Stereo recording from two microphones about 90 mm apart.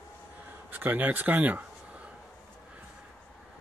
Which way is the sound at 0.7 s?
20° right (ahead or behind).